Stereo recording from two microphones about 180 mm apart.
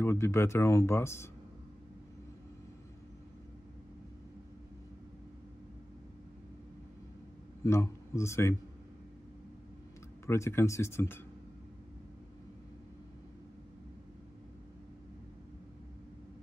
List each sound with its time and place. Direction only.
0.0 s speech: 15° left (ahead or behind)
7.6 s speech: 15° left (ahead or behind)
10.2 s speech: 15° left (ahead or behind)